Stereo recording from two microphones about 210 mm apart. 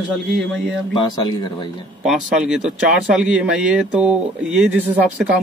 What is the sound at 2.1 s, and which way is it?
Speech, 5° right (ahead or behind).